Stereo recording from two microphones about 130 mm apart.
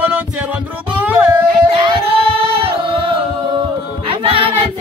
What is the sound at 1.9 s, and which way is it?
Singing, 45° right (ahead or behind).